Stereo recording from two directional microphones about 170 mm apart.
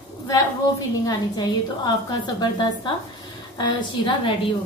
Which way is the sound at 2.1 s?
25° left (ahead or behind).